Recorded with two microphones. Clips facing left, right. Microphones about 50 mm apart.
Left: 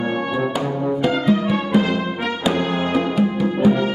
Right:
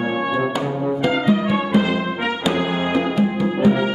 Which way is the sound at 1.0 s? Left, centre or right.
Centre.